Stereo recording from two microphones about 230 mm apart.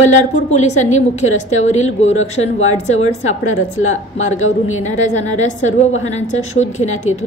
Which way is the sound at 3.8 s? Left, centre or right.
Left.